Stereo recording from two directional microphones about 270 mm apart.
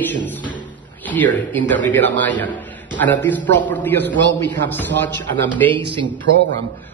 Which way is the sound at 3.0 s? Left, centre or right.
Centre.